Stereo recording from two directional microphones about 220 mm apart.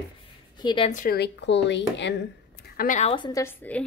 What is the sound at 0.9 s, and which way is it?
Speech, 45° left (ahead or behind).